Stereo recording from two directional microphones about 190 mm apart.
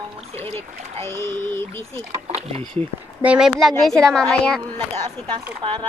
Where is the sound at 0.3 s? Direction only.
30° right (ahead or behind).